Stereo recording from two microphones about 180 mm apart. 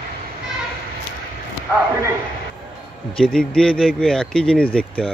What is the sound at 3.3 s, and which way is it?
A man's voice, 5° left (ahead or behind).